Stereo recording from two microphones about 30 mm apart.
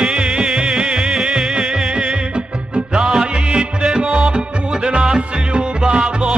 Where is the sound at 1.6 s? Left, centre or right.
Centre.